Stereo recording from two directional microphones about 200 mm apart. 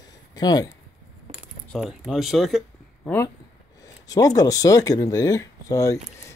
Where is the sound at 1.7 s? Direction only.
5° right (ahead or behind).